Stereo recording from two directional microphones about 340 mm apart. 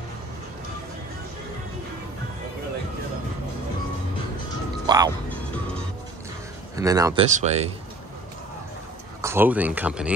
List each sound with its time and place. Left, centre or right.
4.8 s music: centre
6.8 s speech: centre
9.2 s speech: centre